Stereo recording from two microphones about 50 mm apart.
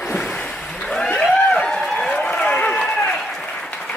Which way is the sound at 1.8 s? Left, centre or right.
Centre.